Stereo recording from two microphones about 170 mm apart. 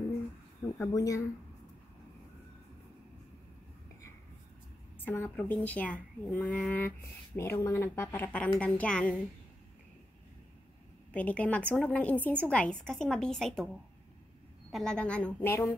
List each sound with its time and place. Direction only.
0.7 s speech: 20° left (ahead or behind)
5.0 s a woman's voice: 10° left (ahead or behind)
11.1 s a woman's voice: 10° left (ahead or behind)
14.7 s a woman's voice: 5° left (ahead or behind)